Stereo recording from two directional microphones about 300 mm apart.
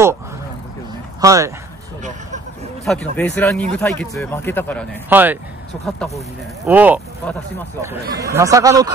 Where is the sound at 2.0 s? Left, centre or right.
Right.